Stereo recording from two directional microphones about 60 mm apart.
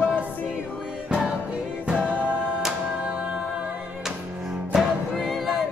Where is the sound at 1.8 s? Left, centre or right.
Centre.